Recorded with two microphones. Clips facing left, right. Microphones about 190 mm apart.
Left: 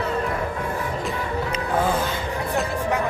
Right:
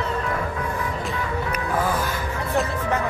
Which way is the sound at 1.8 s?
25° left (ahead or behind).